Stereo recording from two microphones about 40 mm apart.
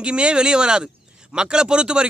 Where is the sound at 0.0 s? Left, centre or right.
Right.